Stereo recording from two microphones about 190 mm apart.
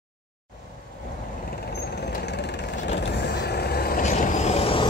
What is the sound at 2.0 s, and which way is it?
Vehicle, 60° left (ahead or behind).